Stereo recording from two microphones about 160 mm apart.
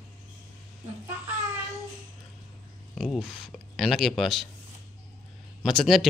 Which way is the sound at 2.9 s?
Centre (ahead or behind).